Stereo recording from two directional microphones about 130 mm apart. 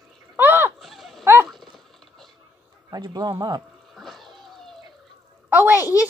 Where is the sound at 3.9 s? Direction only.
Centre (ahead or behind).